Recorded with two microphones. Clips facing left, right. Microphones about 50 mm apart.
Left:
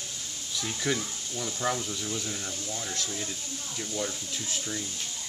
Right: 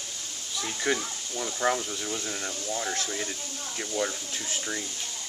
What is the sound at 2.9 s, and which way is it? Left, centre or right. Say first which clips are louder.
Speech: right 3 dB; right.